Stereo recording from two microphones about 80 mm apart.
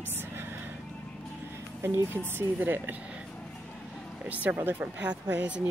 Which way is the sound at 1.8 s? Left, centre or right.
Right.